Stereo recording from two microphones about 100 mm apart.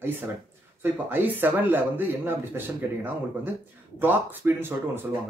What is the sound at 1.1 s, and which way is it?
Speech, 20° right (ahead or behind).